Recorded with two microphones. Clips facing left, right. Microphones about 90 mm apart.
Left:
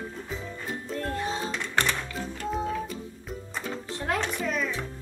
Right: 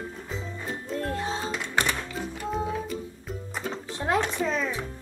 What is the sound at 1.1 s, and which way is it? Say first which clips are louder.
Music: even; 30° right (ahead or behind).